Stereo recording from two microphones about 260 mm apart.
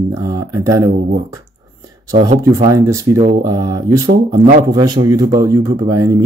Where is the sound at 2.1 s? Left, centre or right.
Right.